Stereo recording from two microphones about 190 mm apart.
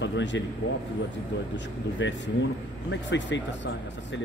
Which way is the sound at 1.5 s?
70° left (ahead or behind).